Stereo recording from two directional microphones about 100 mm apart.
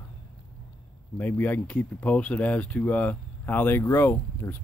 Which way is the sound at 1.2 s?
15° left (ahead or behind).